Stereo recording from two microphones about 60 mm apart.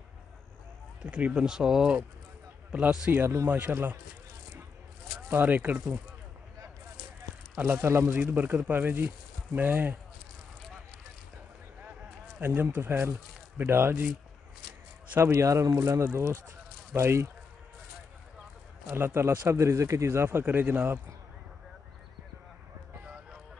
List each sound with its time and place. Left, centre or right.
1.0 s speech: right
3.1 s speech: right
5.3 s speech: right
7.8 s speech: right
8.4 s speech: right
12.4 s speech: right
15.1 s speech: right
18.9 s speech: right